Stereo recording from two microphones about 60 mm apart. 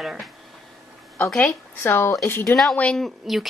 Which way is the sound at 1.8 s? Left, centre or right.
Left.